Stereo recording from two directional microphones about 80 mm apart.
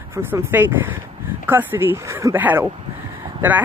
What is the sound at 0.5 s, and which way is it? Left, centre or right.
Speech, right.